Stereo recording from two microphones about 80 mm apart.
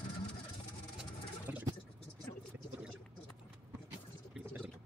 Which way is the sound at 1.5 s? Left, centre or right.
Right.